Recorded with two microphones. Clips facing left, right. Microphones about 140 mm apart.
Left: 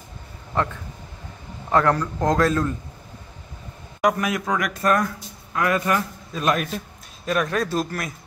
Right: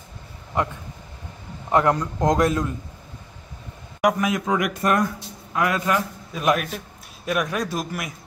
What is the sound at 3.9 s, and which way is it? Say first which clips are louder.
A man's voice: right 1 dB; 20° right (ahead or behind).